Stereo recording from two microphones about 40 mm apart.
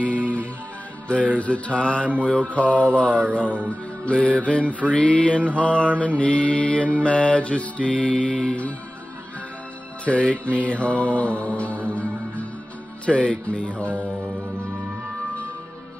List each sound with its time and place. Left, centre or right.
0.1 s music: left
1.4 s mantra: left
3.4 s speech: right
4.0 s music: left
4.4 s mantra: left
10.0 s music: left
13.0 s mantra: left